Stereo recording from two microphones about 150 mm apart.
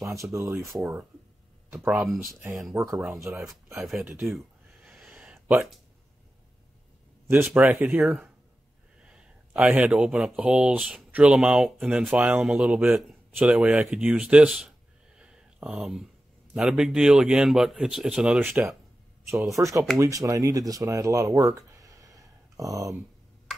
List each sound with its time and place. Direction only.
0.0 s speech: 20° right (ahead or behind)
0.7 s speech: 5° right (ahead or behind)
1.7 s speech: 15° right (ahead or behind)
4.3 s a sound: centre (ahead or behind)
7.2 s speech: 15° right (ahead or behind)
15.1 s a sound: 5° right (ahead or behind)
16.5 s speech: 5° right (ahead or behind)
19.5 s speech: 20° right (ahead or behind)